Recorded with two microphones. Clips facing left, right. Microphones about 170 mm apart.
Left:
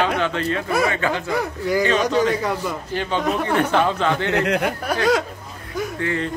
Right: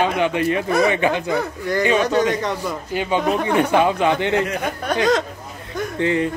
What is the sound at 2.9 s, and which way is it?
Speech, 10° right (ahead or behind).